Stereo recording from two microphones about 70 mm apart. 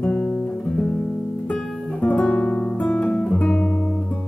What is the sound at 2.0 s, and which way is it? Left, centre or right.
Guitar, left.